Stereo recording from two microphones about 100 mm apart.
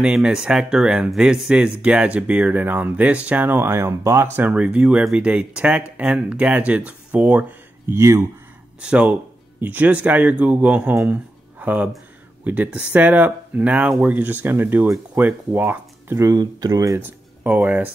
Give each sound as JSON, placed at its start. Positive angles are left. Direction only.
{"t": 0.0, "sound": "speech", "side_deg": -10}
{"t": 8.0, "sound": "speech", "side_deg": -30}
{"t": 8.8, "sound": "speech", "side_deg": -10}
{"t": 16.3, "sound": "speech", "side_deg": -40}
{"t": 17.0, "sound": "speech", "side_deg": -20}